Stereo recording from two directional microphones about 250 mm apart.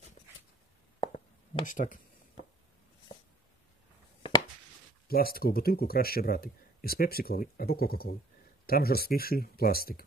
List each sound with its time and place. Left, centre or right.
1.0 s plop: left
1.7 s speech: left
5.0 s speech: left